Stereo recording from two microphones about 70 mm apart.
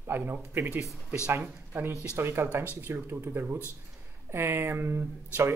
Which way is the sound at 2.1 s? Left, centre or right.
Right.